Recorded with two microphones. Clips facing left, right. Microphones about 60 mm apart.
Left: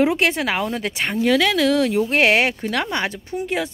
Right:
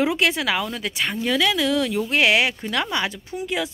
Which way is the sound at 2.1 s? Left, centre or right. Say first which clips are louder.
Left 2 dB; left.